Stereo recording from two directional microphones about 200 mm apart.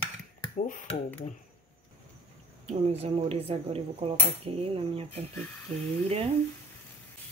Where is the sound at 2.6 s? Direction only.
30° right (ahead or behind).